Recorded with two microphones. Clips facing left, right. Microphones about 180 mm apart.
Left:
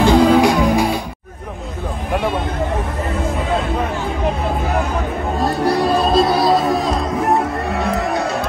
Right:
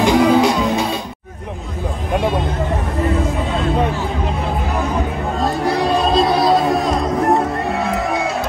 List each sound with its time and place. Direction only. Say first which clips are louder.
0.0 s music: left 1 dB; 20° right (ahead or behind)
5.4 s music: left 1 dB; centre (ahead or behind)